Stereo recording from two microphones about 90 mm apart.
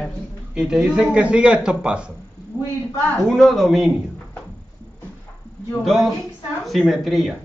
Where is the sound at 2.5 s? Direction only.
40° left (ahead or behind).